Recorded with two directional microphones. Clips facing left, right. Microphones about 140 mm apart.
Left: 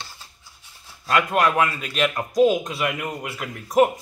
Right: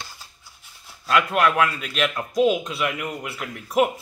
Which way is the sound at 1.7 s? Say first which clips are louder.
Left 1 dB; 40° left (ahead or behind).